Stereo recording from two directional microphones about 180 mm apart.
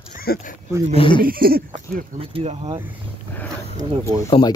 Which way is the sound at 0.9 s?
30° left (ahead or behind).